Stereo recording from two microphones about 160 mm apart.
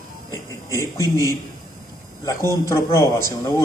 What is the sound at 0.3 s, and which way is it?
A man's voice, 20° left (ahead or behind).